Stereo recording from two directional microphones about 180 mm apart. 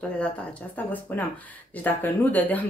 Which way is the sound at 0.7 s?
10° left (ahead or behind).